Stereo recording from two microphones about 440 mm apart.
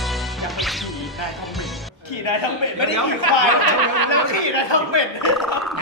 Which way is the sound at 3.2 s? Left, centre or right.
Right.